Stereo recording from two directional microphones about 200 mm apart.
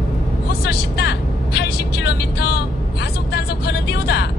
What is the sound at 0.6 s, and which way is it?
Vehicle, 55° left (ahead or behind).